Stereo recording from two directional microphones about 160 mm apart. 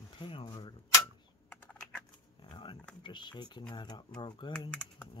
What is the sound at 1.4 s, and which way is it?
Typing, 10° left (ahead or behind).